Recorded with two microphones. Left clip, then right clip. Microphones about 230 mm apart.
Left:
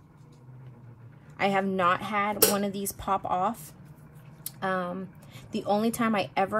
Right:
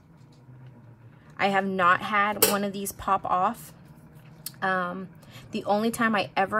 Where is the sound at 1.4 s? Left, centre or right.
Centre.